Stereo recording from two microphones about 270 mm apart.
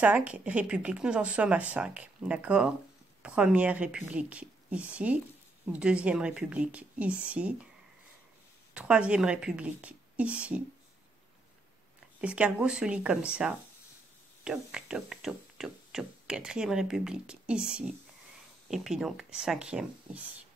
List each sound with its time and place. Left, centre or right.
0.0 s speech: centre
8.7 s speech: centre
12.2 s speech: centre